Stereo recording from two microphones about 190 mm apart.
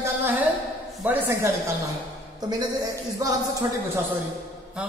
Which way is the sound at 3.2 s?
15° right (ahead or behind).